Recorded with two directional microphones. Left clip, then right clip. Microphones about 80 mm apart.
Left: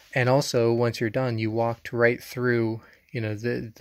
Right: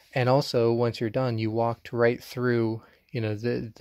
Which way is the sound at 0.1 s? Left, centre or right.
Centre.